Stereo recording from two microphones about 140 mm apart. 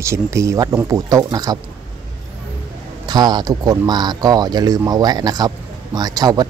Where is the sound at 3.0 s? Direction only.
30° right (ahead or behind).